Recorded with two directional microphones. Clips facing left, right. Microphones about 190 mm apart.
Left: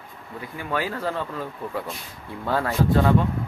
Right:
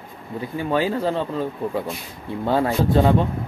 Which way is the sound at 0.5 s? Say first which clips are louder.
Right 6 dB; 25° right (ahead or behind).